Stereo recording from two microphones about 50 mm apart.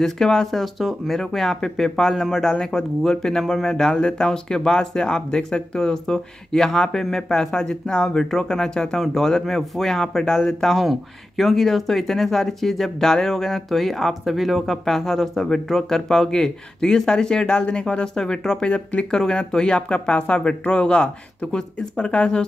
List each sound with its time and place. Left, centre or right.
0.0 s speech: centre